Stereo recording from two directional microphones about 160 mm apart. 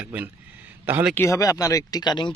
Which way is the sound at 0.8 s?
15° right (ahead or behind).